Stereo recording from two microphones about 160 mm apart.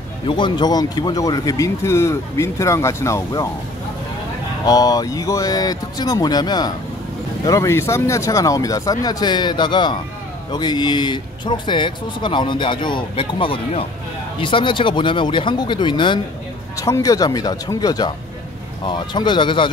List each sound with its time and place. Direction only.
0.3 s speech: 30° left (ahead or behind)
4.6 s speech: 25° left (ahead or behind)
16.7 s speech: 20° left (ahead or behind)